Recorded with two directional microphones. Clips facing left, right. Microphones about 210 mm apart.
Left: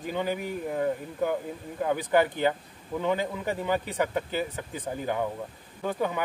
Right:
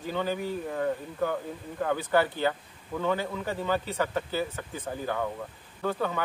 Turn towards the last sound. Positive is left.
turn(degrees=15)  # may be behind; listen again after turning